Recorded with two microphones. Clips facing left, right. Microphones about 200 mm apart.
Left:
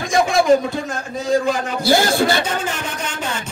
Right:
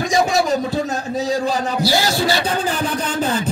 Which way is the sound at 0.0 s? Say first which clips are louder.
Even; 50° left (ahead or behind).